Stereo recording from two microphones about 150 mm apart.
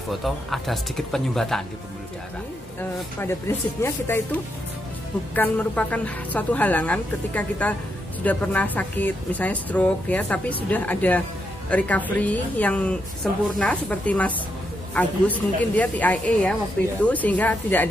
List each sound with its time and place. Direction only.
0.1 s speech: centre (ahead or behind)
3.2 s speech: 15° left (ahead or behind)